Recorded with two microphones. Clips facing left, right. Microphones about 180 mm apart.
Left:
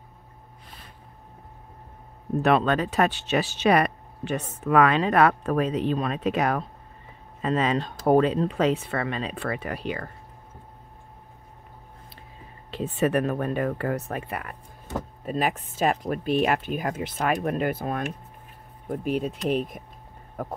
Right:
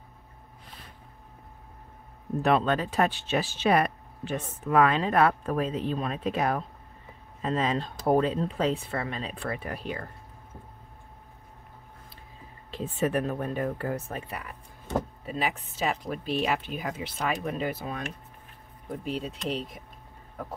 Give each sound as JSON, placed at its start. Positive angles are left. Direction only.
{"t": 2.4, "sound": "speech", "side_deg": 70}
{"t": 12.7, "sound": "speech", "side_deg": 75}
{"t": 15.2, "sound": "speech", "side_deg": 45}